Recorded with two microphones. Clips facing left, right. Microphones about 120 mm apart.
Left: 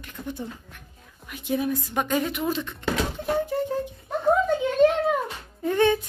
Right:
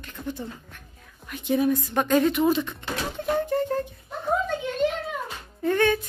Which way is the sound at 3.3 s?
10° left (ahead or behind).